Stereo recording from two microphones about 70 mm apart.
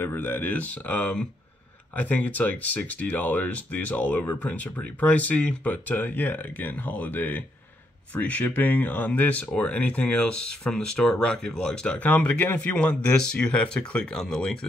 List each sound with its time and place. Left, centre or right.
0.0 s speech: left; by 14.7 s centre